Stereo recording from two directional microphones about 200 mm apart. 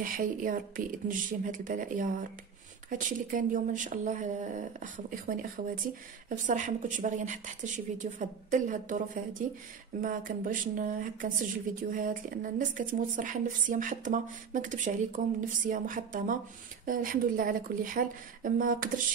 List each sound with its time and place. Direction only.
0.0 s a woman's voice: 40° right (ahead or behind)